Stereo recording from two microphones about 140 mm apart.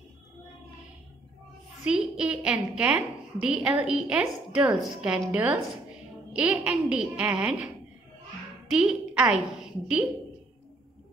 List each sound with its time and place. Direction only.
1.9 s a woman's voice: 5° right (ahead or behind)